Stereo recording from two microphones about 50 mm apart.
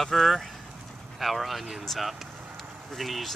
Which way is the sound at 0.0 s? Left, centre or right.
Centre.